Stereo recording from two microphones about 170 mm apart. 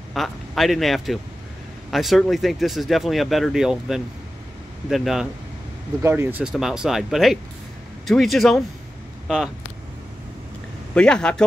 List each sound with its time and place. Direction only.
0.1 s a man's voice: centre (ahead or behind)
6.0 s speech: 15° right (ahead or behind)
11.0 s speech: 5° left (ahead or behind)